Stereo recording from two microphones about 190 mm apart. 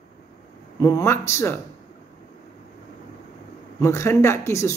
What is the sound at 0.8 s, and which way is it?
Speech, 15° left (ahead or behind).